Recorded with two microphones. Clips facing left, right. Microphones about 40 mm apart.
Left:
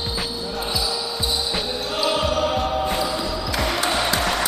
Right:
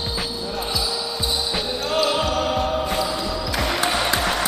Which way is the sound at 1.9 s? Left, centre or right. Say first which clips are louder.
Right 1 dB; centre.